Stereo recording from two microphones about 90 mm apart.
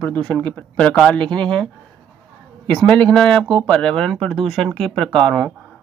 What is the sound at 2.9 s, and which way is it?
Speech, 10° left (ahead or behind).